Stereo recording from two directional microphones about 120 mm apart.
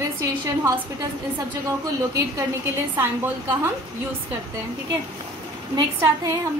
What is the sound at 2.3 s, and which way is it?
A woman's voice, 20° right (ahead or behind).